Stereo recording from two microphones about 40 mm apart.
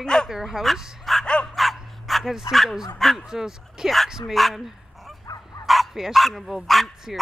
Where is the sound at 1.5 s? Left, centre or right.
Centre.